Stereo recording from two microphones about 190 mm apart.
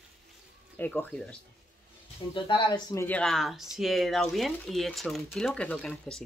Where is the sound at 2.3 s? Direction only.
25° left (ahead or behind).